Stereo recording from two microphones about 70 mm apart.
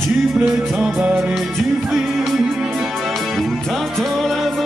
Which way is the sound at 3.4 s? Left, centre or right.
Centre.